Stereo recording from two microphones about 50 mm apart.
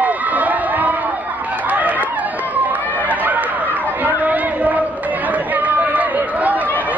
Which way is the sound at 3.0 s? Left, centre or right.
Right.